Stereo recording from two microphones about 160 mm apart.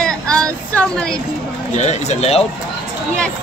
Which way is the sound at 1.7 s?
45° left (ahead or behind).